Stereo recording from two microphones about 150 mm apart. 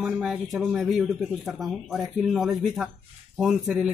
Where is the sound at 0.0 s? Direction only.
5° right (ahead or behind).